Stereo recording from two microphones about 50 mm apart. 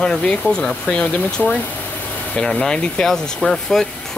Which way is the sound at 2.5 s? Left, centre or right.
Centre.